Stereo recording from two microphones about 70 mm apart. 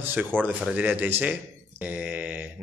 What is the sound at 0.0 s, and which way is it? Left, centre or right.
Speech, right.